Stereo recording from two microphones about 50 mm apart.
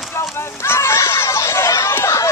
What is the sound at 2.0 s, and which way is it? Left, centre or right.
Run, left.